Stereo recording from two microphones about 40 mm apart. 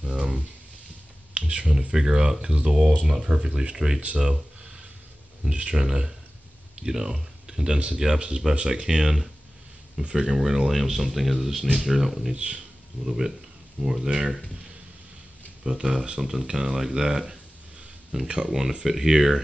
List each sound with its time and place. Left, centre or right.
0.0 s a sound: right
1.3 s speech: right; by 4.0 s centre
4.0 s speech: right
4.3 s a sound: centre
5.5 s speech: right
5.8 s speech: centre
12.4 s speech: right
13.0 s speech: centre
15.6 s speech: centre